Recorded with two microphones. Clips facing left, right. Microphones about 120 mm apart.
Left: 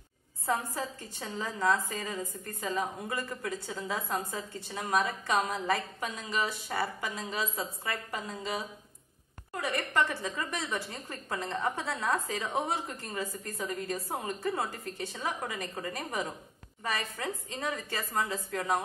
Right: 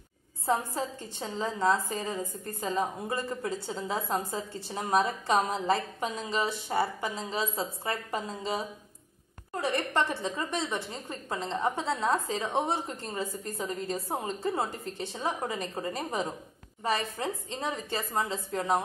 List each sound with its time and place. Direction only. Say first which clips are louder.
0.5 s a woman's voice: right 3 dB; 25° right (ahead or behind)